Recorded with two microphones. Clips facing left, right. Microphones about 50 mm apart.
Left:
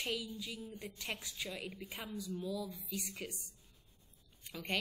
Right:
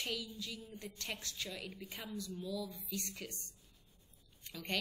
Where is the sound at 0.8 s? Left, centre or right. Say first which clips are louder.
Even; centre.